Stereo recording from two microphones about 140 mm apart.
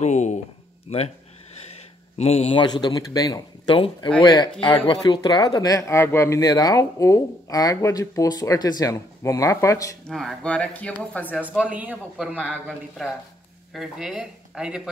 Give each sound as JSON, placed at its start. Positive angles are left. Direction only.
{"t": 0.0, "sound": "speech", "side_deg": 55}
{"t": 2.1, "sound": "speech", "side_deg": 45}
{"t": 10.0, "sound": "speech", "side_deg": 5}
{"t": 11.4, "sound": "a man's voice", "side_deg": -10}
{"t": 12.6, "sound": "speech", "side_deg": 0}